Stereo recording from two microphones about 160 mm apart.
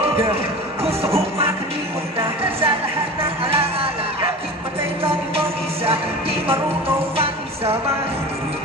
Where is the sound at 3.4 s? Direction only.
35° right (ahead or behind).